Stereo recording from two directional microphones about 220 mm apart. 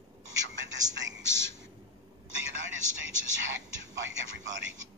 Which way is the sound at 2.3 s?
60° right (ahead or behind).